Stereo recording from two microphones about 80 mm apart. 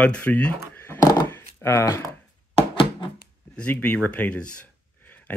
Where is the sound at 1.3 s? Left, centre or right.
Left.